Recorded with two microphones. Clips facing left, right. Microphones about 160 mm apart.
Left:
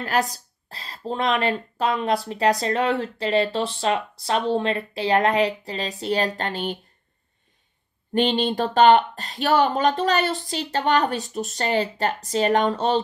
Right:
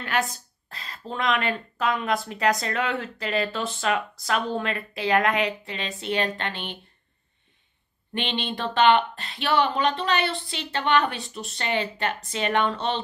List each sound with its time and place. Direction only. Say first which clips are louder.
0.0 s a woman's voice: left 3 dB; 35° left (ahead or behind)
8.1 s a woman's voice: left 8 dB; 40° left (ahead or behind)